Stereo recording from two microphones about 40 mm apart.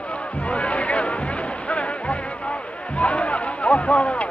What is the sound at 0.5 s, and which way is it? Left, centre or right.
Music, left.